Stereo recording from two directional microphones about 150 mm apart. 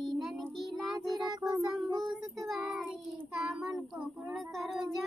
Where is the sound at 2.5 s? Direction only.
Centre (ahead or behind).